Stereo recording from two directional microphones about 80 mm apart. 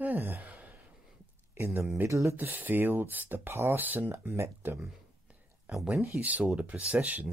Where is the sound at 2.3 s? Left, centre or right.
Right.